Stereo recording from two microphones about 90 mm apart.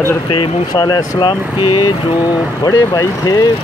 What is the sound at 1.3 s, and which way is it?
Speech, 65° left (ahead or behind).